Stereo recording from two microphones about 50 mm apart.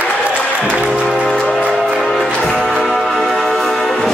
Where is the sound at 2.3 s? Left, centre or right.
Left.